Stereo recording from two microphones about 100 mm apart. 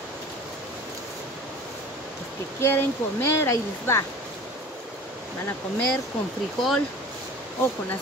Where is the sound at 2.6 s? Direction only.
25° left (ahead or behind).